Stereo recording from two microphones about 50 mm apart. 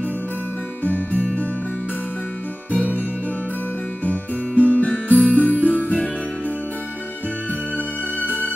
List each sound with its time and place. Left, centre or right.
0.8 s music: left
4.0 s music: left
7.7 s music: left